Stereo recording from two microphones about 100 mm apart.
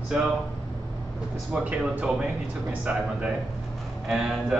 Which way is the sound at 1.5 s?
15° right (ahead or behind).